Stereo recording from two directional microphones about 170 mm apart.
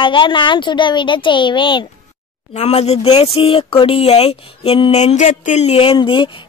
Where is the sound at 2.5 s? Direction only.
40° left (ahead or behind).